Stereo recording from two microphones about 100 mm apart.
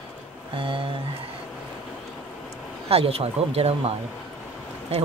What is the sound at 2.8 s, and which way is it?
Speech, 75° right (ahead or behind).